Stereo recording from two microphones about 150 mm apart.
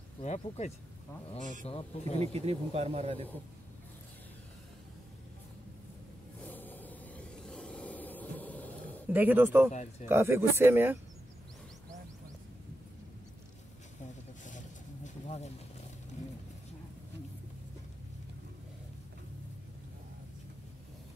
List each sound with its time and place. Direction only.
0.2 s speech: 50° left (ahead or behind)
1.7 s speech: 40° left (ahead or behind)
2.1 s speech: 40° right (ahead or behind)
6.4 s vehicle: 10° left (ahead or behind)
9.1 s speech: 10° right (ahead or behind)
9.7 s speech: 50° left (ahead or behind)
10.0 s speech: 15° right (ahead or behind)
15.0 s a sound: 50° left (ahead or behind)